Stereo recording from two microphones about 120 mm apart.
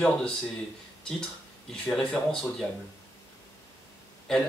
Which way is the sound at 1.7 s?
5° left (ahead or behind).